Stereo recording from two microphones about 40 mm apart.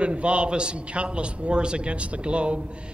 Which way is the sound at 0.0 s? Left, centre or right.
Right.